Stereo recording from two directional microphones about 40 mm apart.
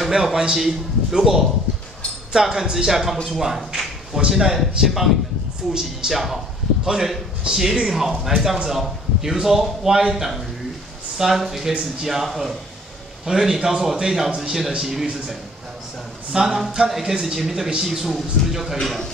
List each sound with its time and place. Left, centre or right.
0.1 s a man's voice: centre
6.8 s a man's voice: centre
16.3 s a man's voice: centre